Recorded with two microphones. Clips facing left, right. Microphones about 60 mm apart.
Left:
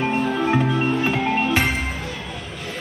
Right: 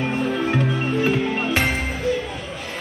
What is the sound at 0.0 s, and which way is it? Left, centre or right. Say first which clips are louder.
Music: left 2 dB; left.